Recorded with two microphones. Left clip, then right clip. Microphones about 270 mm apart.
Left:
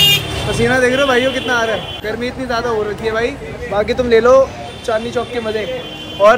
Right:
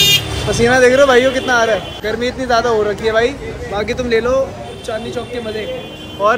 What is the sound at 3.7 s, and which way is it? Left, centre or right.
Speech, centre.